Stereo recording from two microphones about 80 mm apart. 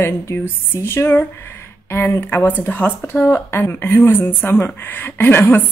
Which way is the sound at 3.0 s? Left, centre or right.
Left.